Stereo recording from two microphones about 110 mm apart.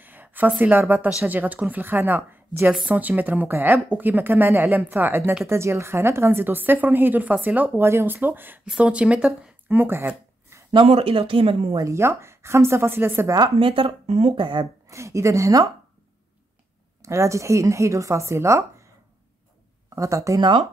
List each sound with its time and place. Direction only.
0.0 s a sound: 15° right (ahead or behind)
0.6 s a woman's voice: 15° right (ahead or behind)
10.9 s speech: 60° right (ahead or behind)
11.7 s speech: 30° right (ahead or behind)
13.6 s speech: 55° right (ahead or behind)
14.3 s speech: 45° right (ahead or behind)
14.9 s speech: 25° right (ahead or behind)
17.0 s speech: 25° right (ahead or behind)
20.0 s speech: 30° right (ahead or behind)